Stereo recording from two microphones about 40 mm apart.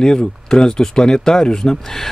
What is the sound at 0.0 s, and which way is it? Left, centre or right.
Speech, centre.